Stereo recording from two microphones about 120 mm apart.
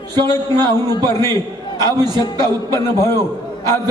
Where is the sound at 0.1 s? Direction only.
35° right (ahead or behind).